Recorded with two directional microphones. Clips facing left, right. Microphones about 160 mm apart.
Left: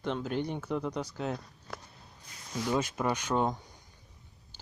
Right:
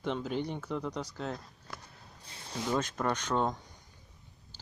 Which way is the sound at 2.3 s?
30° right (ahead or behind).